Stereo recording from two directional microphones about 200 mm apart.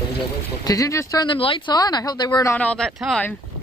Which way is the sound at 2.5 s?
5° left (ahead or behind).